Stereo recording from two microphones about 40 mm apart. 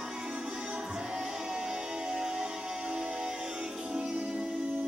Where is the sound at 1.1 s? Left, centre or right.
Centre.